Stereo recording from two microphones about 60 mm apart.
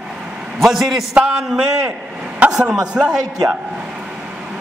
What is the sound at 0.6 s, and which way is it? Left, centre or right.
A man's voice, centre.